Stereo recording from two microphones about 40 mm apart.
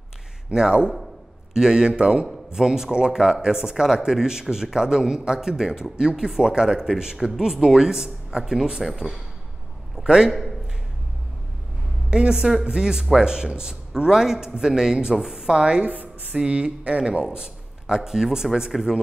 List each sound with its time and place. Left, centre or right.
0.5 s a woman's voice: right
2.5 s a man's voice: centre
12.1 s a woman's voice: right
15.8 s a woman's voice: right
16.4 s a man's voice: right